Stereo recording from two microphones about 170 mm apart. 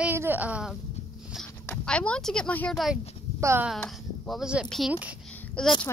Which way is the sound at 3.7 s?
5° left (ahead or behind).